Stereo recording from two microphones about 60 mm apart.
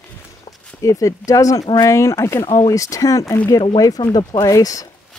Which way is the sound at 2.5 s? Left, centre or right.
Left.